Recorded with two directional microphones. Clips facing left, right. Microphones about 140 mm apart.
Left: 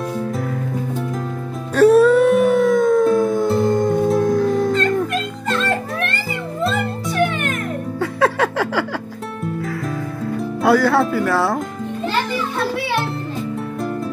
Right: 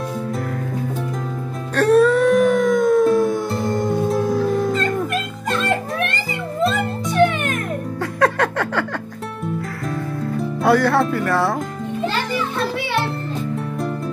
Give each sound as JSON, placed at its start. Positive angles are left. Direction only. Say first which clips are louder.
{"t": 1.8, "sound": "music", "louder": "left 3 dB", "side_deg": 5}
{"t": 5.5, "sound": "music", "louder": "even", "side_deg": -15}
{"t": 8.0, "sound": "a sound", "louder": "left 1 dB", "side_deg": 5}
{"t": 10.6, "sound": "speech", "louder": "left 1 dB", "side_deg": 0}